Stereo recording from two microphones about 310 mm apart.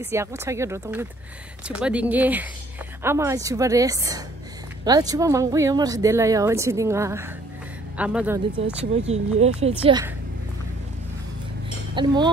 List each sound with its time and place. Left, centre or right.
0.0 s speech: centre
8.9 s speech: right
11.9 s speech: centre